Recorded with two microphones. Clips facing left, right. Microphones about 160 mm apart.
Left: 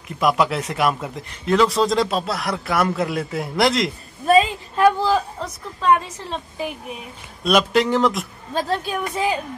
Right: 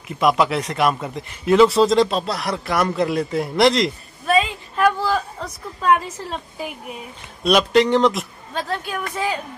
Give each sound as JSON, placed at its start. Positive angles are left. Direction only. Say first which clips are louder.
{"t": 0.2, "sound": "a man's voice", "louder": "right 1 dB", "side_deg": 0}
{"t": 4.3, "sound": "a woman's voice", "louder": "left 3 dB", "side_deg": 30}
{"t": 5.9, "sound": "a woman's voice", "louder": "even", "side_deg": -10}
{"t": 7.4, "sound": "a man's voice", "louder": "right 2 dB", "side_deg": 0}
{"t": 8.5, "sound": "a woman's voice", "louder": "left 3 dB", "side_deg": 30}
{"t": 9.1, "sound": "speech", "louder": "left 2 dB", "side_deg": 15}